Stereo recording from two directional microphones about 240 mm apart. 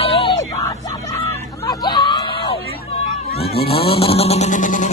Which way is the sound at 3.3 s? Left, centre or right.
Left.